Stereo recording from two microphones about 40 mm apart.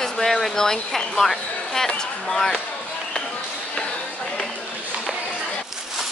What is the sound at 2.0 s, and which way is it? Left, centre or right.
Speech, centre.